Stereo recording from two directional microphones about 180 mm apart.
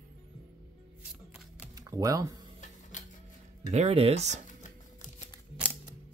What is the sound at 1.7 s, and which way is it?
Speech, 20° right (ahead or behind).